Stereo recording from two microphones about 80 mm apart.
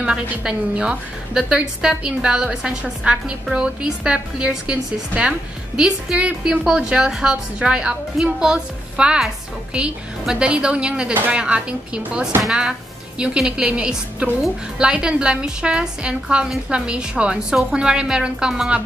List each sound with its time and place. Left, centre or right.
0.0 s a woman's voice: centre